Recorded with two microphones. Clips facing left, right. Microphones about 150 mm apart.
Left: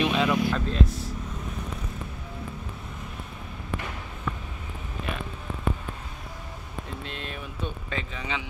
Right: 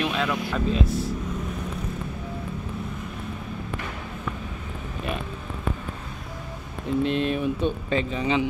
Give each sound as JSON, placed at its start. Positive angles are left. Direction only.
{"t": 0.0, "sound": "music", "side_deg": 0}
{"t": 0.8, "sound": "vehicle", "side_deg": -25}
{"t": 7.0, "sound": "a sound", "side_deg": -20}